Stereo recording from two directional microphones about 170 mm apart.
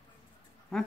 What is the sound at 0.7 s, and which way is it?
Speech, 5° left (ahead or behind).